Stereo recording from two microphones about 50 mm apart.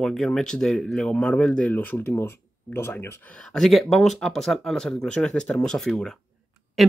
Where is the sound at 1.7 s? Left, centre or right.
Left.